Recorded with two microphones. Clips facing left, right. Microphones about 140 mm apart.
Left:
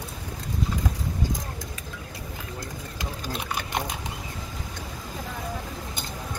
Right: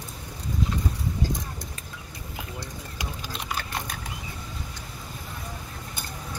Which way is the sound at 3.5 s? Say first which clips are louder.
Left 3 dB; 20° left (ahead or behind).